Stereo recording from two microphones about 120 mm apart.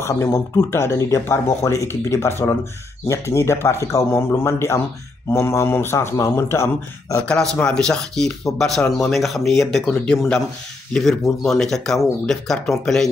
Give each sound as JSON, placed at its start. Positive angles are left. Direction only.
{"t": 0.0, "sound": "speech", "side_deg": 25}
{"t": 7.2, "sound": "speech", "side_deg": 10}